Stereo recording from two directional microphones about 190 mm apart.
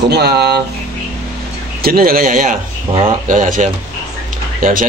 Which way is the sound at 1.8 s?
50° right (ahead or behind).